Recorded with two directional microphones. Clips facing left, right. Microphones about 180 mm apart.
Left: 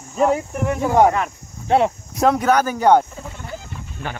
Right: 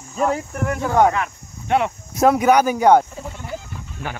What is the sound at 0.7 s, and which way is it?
Speech, 20° left (ahead or behind).